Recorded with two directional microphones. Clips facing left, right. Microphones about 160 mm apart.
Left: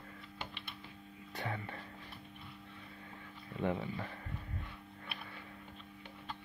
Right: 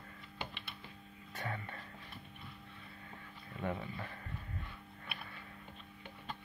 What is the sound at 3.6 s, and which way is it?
Speech, 10° left (ahead or behind).